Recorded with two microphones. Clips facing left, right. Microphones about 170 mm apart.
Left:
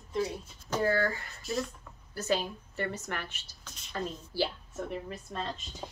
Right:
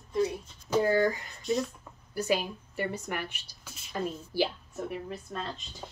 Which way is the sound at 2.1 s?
10° right (ahead or behind).